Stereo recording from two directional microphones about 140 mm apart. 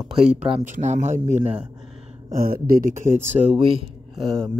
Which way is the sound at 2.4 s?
90° right.